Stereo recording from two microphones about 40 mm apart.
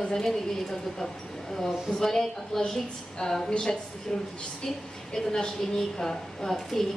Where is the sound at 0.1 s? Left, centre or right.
Centre.